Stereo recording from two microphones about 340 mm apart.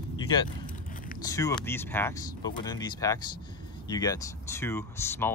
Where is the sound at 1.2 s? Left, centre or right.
Centre.